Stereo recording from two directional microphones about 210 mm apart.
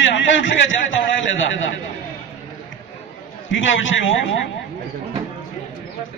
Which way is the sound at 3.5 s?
65° left (ahead or behind).